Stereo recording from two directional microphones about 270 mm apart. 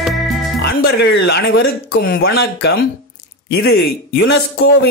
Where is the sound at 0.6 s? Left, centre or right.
Left.